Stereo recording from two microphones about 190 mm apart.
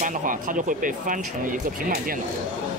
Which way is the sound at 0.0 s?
45° right (ahead or behind).